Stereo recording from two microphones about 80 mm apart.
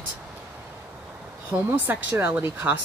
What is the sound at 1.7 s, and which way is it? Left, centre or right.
Speech, right.